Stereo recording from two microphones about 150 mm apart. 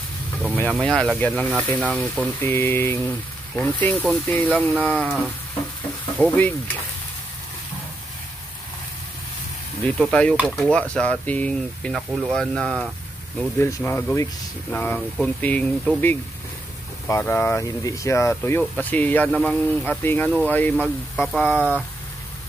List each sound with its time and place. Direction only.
0.5 s speech: 10° left (ahead or behind)
9.9 s speech: 5° left (ahead or behind)
13.6 s speech: 20° left (ahead or behind)
17.1 s speech: 15° left (ahead or behind)